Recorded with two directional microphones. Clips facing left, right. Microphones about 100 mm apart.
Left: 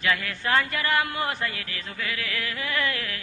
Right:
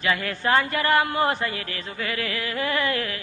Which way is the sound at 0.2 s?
35° right (ahead or behind).